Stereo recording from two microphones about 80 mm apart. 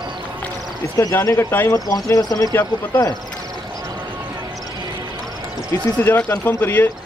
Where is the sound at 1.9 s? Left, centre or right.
Left.